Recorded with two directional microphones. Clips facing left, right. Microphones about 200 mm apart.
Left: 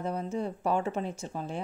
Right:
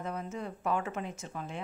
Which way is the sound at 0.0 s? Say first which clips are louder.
Left 5 dB; 30° left (ahead or behind).